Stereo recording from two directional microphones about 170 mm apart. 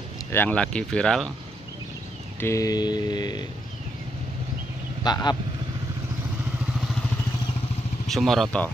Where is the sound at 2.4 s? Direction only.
20° left (ahead or behind).